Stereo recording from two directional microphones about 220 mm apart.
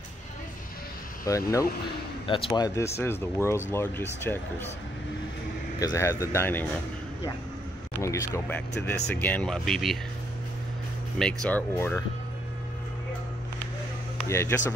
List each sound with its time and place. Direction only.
1.2 s speech: 15° left (ahead or behind)
5.8 s speech: 15° left (ahead or behind)
8.0 s speech: 10° left (ahead or behind)
11.4 s speech: 10° left (ahead or behind)
14.2 s speech: 10° left (ahead or behind)